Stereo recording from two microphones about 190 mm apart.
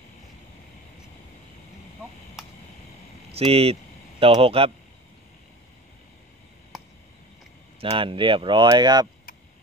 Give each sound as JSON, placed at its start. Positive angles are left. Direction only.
{"t": 3.3, "sound": "speech", "side_deg": -30}
{"t": 7.8, "sound": "speech", "side_deg": -30}